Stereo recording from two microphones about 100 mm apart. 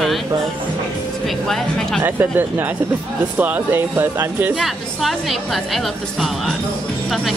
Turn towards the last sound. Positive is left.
turn(degrees=0)  # may be behind; listen again after turning